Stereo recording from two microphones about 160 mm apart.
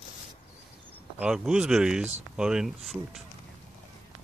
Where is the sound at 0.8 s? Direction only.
5° right (ahead or behind).